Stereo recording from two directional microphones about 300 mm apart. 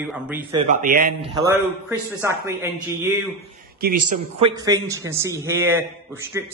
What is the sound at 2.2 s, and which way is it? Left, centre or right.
Speech, centre.